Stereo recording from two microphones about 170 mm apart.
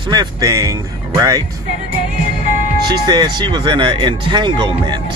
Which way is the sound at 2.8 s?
25° right (ahead or behind).